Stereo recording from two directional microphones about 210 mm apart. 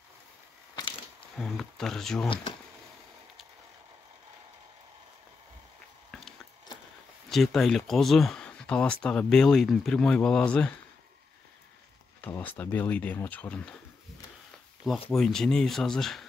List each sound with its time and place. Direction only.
1.3 s speech: centre (ahead or behind)
2.2 s speech: 25° left (ahead or behind)
6.1 s a sound: 5° left (ahead or behind)
7.2 s speech: centre (ahead or behind)
12.2 s speech: 10° left (ahead or behind)
14.9 s speech: centre (ahead or behind)